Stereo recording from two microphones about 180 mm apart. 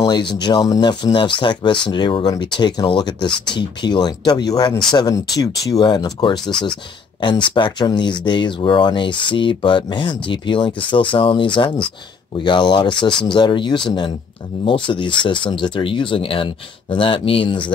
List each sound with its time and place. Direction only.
0.0 s speech: 25° left (ahead or behind)